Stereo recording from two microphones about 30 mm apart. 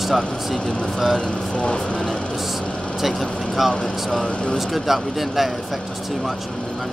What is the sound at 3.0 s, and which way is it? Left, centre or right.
Speech, centre.